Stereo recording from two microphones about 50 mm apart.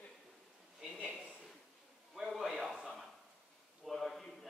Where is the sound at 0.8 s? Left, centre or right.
Centre.